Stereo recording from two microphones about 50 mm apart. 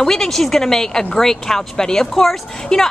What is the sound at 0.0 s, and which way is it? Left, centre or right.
Speech, centre.